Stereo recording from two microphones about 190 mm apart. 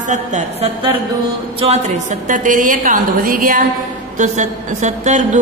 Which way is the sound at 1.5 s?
35° right (ahead or behind).